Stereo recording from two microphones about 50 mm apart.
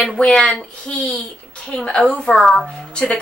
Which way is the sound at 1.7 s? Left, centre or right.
Centre.